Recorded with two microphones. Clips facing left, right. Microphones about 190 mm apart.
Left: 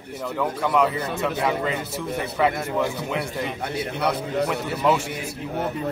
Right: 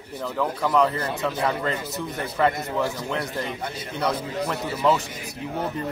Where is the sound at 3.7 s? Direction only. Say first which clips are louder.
Left 2 dB; 65° left (ahead or behind).